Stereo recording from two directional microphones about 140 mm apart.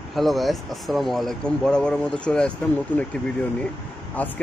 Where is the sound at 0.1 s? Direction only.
Centre (ahead or behind).